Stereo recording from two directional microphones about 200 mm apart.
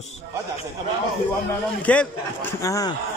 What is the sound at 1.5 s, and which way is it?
A man's voice, 5° left (ahead or behind).